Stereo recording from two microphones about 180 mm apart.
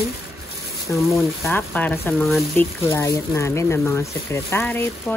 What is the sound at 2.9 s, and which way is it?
Speech, 15° left (ahead or behind).